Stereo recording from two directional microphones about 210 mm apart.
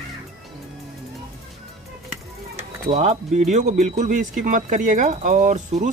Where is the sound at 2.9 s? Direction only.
35° right (ahead or behind).